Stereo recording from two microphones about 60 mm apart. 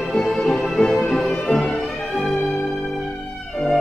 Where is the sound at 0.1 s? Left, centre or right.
Centre.